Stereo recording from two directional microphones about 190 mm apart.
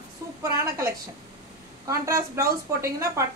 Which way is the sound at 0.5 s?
15° right (ahead or behind).